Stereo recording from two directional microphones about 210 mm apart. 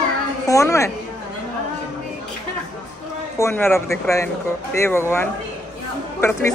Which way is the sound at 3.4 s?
10° left (ahead or behind).